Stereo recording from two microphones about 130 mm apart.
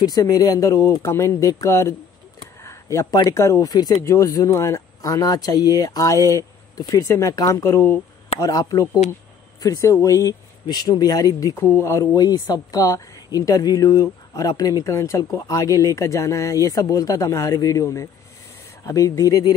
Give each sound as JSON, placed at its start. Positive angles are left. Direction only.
{"t": 0.0, "sound": "speech", "side_deg": 30}
{"t": 2.6, "sound": "a sound", "side_deg": 20}
{"t": 3.3, "sound": "speech", "side_deg": 25}